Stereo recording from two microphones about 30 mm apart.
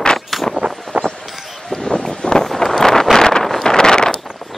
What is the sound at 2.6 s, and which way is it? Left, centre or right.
Wind noise, centre.